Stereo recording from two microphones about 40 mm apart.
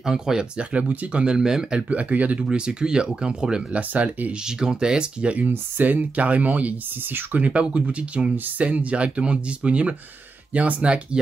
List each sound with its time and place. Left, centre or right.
0.0 s speech: centre
0.6 s speech: right
1.9 s speech: right
2.4 s speech: right
3.7 s speech: right
4.5 s speech: centre
5.5 s speech: right
7.1 s speech: right
7.4 s speech: right